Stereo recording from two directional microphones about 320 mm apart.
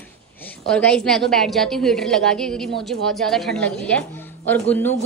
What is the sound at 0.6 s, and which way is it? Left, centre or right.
Speech, centre.